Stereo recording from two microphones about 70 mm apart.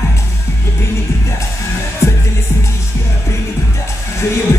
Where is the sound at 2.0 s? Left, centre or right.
Left.